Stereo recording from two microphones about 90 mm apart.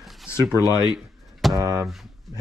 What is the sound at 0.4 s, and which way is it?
Speech, 45° right (ahead or behind).